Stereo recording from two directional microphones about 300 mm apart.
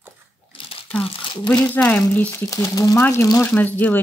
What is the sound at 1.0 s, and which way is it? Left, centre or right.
Crumpling, centre.